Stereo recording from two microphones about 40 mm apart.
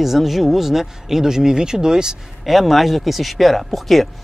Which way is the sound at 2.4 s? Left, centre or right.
Centre.